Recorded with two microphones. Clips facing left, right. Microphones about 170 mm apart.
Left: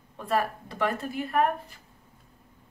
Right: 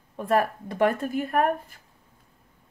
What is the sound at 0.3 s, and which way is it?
A woman's voice, 50° right (ahead or behind).